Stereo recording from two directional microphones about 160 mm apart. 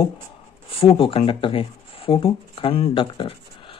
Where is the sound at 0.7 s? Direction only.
35° left (ahead or behind).